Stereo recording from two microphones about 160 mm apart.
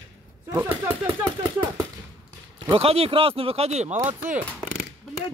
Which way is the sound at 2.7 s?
40° right (ahead or behind).